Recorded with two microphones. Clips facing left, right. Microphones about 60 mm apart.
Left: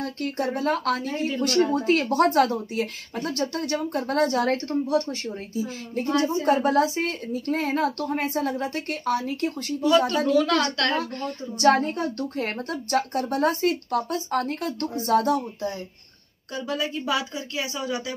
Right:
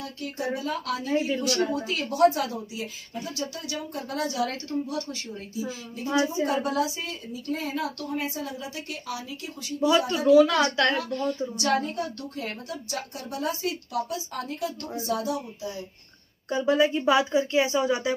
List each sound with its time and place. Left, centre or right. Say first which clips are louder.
0.0 s speech: left 5 dB; left
6.0 s speech: left 2 dB; left
9.8 s a woman's voice: left 2 dB; centre
11.0 s speech: right 2 dB; left
16.5 s speech: right 6 dB; right